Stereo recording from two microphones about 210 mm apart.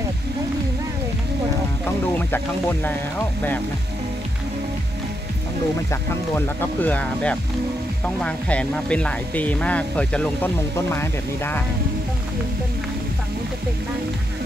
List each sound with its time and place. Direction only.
2.1 s speech: 10° left (ahead or behind)
5.9 s speech: 10° left (ahead or behind)